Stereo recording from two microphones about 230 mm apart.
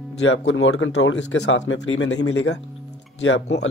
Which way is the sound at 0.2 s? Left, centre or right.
Left.